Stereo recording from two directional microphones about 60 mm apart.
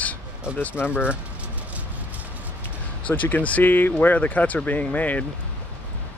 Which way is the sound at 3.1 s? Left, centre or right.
Left.